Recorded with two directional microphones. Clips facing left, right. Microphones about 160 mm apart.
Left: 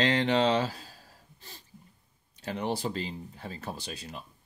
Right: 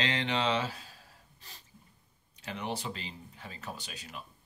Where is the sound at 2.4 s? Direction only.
35° left (ahead or behind).